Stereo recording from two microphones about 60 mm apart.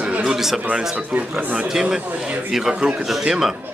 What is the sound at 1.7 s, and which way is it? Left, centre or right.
Speech, centre.